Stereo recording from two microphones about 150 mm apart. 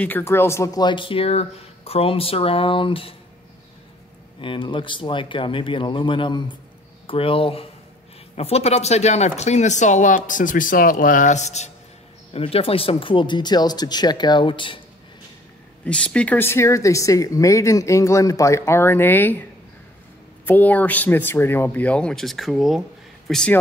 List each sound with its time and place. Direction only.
0.0 s speech: 15° left (ahead or behind); by 3.2 s 35° left (ahead or behind)
4.4 s speech: 35° left (ahead or behind)
15.8 s speech: 10° left (ahead or behind)
20.4 s speech: 10° left (ahead or behind)